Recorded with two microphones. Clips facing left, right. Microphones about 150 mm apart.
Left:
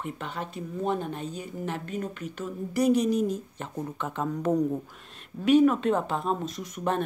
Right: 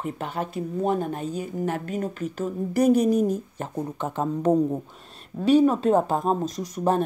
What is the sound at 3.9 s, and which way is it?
Speech, 35° right (ahead or behind).